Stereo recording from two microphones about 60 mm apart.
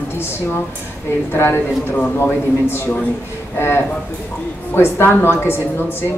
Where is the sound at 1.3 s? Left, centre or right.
Left.